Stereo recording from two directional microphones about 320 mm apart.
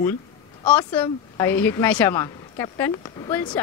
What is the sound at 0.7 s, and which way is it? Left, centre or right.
A man's voice, centre.